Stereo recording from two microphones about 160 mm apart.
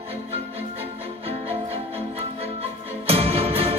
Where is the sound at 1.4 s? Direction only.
40° right (ahead or behind).